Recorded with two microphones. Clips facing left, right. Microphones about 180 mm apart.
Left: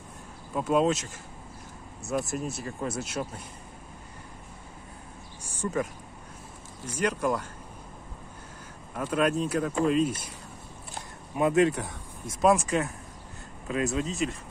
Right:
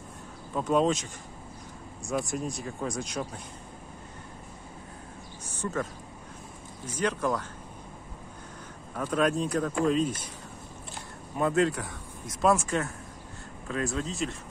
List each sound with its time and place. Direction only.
0.6 s speech: 10° left (ahead or behind)
5.4 s a sound: 10° left (ahead or behind)
6.9 s speech: 10° left (ahead or behind)
8.9 s speech: 10° left (ahead or behind)
11.3 s speech: 15° left (ahead or behind)
13.7 s speech: 15° left (ahead or behind)